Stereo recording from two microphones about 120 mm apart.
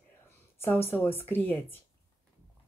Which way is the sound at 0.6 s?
20° left (ahead or behind).